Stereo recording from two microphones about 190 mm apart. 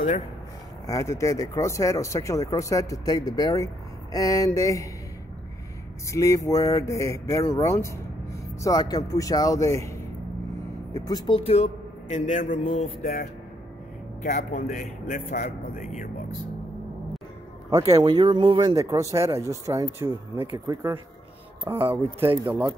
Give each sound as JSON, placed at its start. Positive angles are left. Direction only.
{"t": 0.8, "sound": "speech", "side_deg": 15}
{"t": 6.0, "sound": "speech", "side_deg": 15}
{"t": 11.1, "sound": "a man's voice", "side_deg": 25}
{"t": 17.6, "sound": "speech", "side_deg": -20}
{"t": 22.5, "sound": "speech", "side_deg": -10}